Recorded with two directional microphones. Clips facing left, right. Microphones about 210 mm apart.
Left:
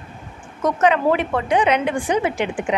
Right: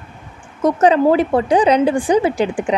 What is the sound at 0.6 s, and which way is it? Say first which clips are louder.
Speech: right 5 dB; 35° right (ahead or behind).